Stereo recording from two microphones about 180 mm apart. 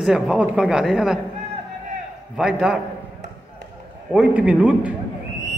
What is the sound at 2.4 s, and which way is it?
Speech, 5° right (ahead or behind).